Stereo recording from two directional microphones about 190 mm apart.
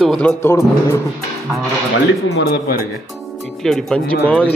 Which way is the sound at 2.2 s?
65° left (ahead or behind).